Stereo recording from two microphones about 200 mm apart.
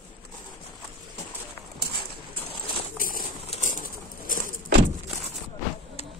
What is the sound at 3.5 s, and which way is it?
Pigeon, 40° left (ahead or behind).